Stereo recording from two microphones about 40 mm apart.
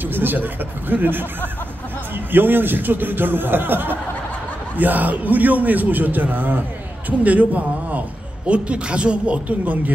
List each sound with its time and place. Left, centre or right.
0.0 s a man's voice: right
4.7 s a man's voice: right
7.1 s speech: right